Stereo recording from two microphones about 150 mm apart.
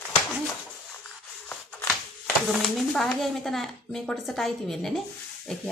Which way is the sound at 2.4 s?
Centre (ahead or behind).